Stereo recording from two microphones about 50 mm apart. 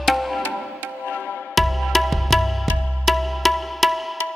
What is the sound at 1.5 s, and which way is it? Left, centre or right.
Music, centre.